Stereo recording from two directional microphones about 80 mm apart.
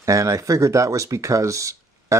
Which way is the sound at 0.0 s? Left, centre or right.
Right.